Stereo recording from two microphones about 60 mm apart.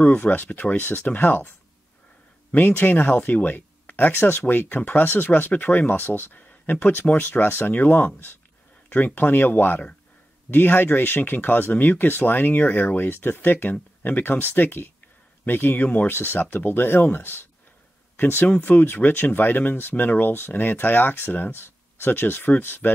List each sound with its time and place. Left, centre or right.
0.0 s speech: left
2.5 s speech: left